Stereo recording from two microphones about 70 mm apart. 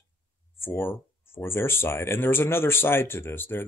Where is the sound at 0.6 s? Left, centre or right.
Left.